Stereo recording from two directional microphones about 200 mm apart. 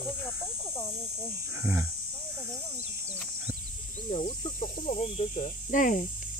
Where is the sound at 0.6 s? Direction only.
15° left (ahead or behind).